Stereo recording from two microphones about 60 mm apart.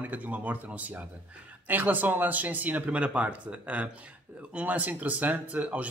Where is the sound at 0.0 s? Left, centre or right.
Right.